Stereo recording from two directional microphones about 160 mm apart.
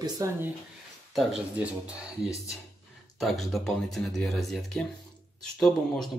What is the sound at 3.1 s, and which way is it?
Speech, centre (ahead or behind).